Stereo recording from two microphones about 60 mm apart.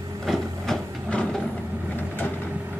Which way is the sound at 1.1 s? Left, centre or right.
Centre.